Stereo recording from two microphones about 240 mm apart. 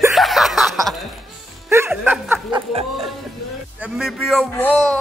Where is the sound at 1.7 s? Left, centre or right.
Centre.